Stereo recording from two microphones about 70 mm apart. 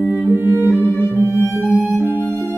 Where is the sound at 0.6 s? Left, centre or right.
Left.